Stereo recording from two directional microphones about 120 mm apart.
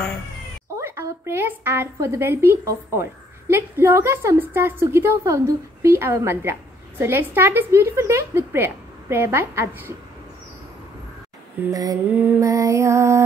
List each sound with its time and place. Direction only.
0.7 s a woman's voice: 20° right (ahead or behind)
11.7 s mantra: 30° right (ahead or behind)
12.1 s mantra: 15° right (ahead or behind)
12.4 s a woman's voice: 25° right (ahead or behind)